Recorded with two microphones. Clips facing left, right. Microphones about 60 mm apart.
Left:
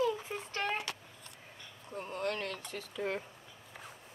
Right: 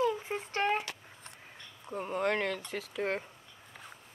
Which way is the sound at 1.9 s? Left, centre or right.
Right.